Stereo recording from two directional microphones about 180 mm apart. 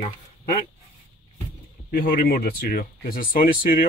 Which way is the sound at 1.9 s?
55° left (ahead or behind).